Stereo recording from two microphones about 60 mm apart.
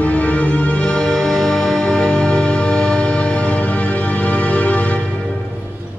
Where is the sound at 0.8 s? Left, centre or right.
Centre; by 5.0 s left.